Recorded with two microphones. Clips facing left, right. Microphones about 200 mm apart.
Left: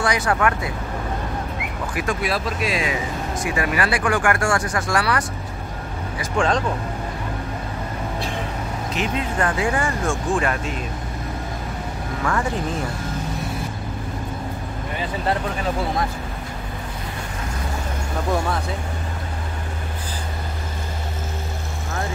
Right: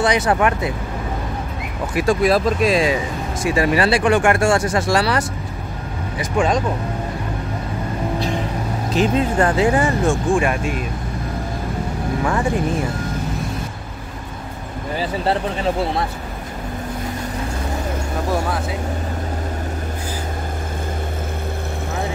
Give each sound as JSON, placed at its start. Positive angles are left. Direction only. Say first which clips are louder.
{"t": 0.0, "sound": "speech", "louder": "right 4 dB", "side_deg": -20}
{"t": 2.0, "sound": "speech", "louder": "right 9 dB", "side_deg": -35}
{"t": 6.3, "sound": "speech", "louder": "right 2 dB", "side_deg": -10}
{"t": 8.9, "sound": "speech", "louder": "right 8 dB", "side_deg": -30}
{"t": 12.2, "sound": "speech", "louder": "right 2 dB", "side_deg": -20}